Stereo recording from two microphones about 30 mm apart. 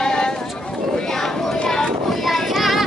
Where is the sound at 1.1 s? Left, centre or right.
Centre.